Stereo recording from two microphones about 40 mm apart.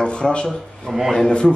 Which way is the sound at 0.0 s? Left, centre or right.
Left.